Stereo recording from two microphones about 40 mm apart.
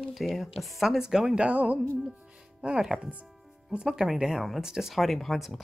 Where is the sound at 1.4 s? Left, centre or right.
Right.